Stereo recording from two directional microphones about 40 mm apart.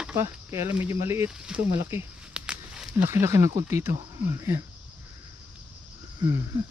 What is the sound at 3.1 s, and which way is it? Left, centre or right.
Speech, right.